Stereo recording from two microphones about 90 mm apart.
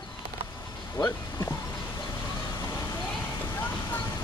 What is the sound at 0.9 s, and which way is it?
Speech, 30° left (ahead or behind).